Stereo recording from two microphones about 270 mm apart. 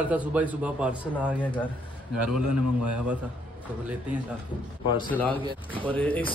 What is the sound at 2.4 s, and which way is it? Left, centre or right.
Speech, right.